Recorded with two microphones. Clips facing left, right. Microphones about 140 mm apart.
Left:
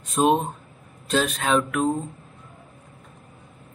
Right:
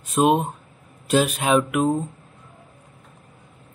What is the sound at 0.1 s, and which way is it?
Speech, 5° right (ahead or behind).